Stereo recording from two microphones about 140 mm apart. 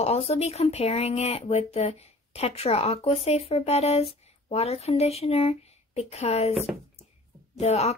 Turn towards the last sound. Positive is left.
turn(degrees=50)  # may be behind; listen again after turning